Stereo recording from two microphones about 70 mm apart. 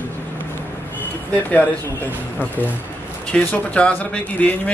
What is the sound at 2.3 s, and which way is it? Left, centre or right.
A man's voice, left.